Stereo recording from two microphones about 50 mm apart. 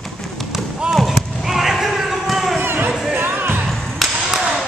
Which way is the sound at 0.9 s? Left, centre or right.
Centre.